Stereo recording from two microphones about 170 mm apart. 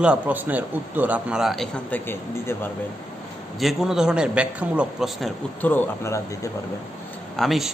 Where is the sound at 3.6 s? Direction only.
5° right (ahead or behind).